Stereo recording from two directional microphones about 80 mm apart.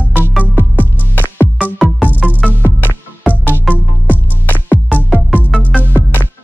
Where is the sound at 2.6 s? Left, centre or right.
Left.